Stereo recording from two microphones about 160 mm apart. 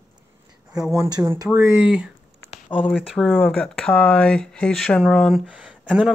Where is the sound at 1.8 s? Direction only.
5° right (ahead or behind).